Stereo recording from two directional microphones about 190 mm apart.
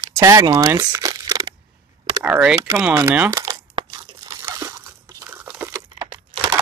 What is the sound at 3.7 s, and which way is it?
Crunch, 20° right (ahead or behind).